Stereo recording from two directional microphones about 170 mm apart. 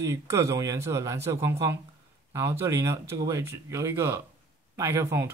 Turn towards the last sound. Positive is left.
turn(degrees=-15)  # may be behind; listen again after turning